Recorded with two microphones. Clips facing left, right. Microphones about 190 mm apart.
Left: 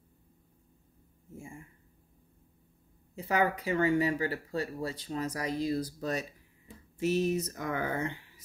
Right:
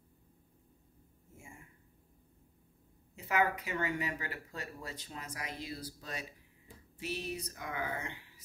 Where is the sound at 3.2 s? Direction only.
35° left (ahead or behind).